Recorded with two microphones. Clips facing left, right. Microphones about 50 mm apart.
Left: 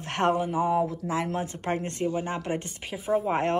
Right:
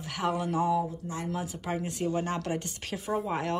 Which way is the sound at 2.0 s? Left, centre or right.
Left.